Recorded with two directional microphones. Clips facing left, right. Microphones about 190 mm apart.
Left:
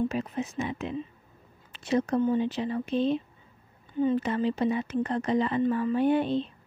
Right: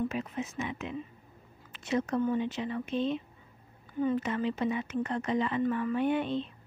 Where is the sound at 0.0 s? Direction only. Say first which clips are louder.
Left 4 dB; 35° left (ahead or behind).